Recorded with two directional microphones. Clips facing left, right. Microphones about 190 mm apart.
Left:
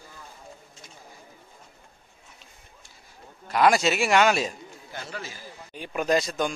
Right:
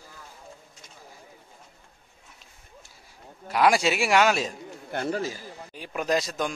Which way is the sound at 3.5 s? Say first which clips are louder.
Left 1 dB; 10° right (ahead or behind).